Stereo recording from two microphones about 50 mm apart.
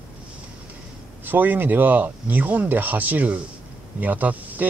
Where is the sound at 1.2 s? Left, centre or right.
Right.